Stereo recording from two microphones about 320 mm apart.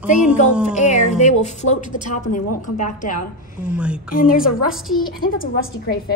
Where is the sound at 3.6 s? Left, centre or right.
Centre.